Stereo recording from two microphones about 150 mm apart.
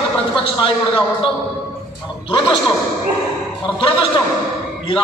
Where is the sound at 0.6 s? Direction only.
35° left (ahead or behind).